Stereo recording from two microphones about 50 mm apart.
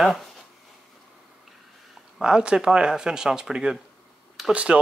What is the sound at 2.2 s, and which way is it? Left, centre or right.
Speech, centre.